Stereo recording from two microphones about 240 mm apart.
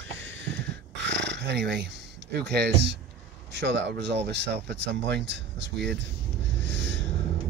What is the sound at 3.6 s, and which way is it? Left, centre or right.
Speech, right.